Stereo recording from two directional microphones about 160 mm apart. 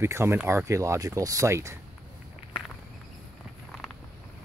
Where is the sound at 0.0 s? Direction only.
15° right (ahead or behind).